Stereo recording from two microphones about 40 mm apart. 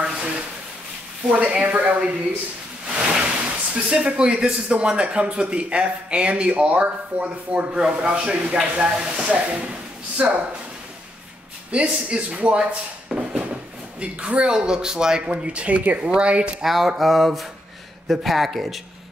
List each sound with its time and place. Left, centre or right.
1.3 s speech: right
3.0 s speech: right
7.5 s speech: right
11.7 s speech: right
15.2 s speech: right
16.6 s a sound: centre